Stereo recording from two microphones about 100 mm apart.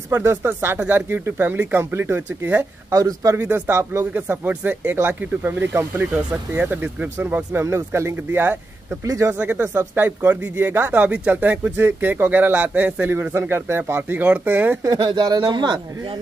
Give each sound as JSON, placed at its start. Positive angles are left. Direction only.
{"t": 0.1, "sound": "speech", "side_deg": -25}
{"t": 2.9, "sound": "speech", "side_deg": -35}
{"t": 3.3, "sound": "speech", "side_deg": -20}
{"t": 9.0, "sound": "speech", "side_deg": -35}
{"t": 9.3, "sound": "speech", "side_deg": -15}
{"t": 9.6, "sound": "speech", "side_deg": -25}
{"t": 10.0, "sound": "speech", "side_deg": -15}
{"t": 14.8, "sound": "speech", "side_deg": -40}